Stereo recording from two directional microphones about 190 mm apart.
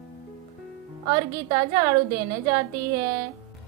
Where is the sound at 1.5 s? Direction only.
20° right (ahead or behind).